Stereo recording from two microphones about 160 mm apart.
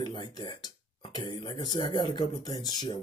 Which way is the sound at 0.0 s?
25° left (ahead or behind).